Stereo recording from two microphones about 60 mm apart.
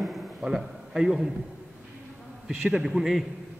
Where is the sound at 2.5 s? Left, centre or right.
Centre.